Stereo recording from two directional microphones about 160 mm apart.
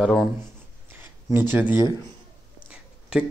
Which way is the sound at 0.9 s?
15° right (ahead or behind).